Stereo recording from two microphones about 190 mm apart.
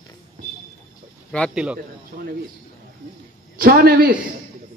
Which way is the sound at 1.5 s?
5° right (ahead or behind).